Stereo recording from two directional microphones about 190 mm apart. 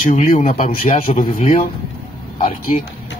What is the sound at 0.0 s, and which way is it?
Speech, 45° left (ahead or behind).